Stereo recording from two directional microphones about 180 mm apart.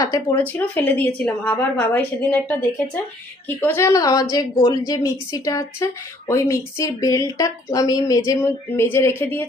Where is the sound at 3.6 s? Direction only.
15° left (ahead or behind).